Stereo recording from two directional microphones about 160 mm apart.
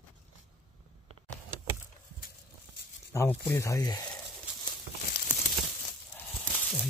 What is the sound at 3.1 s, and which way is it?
Speech, 15° left (ahead or behind).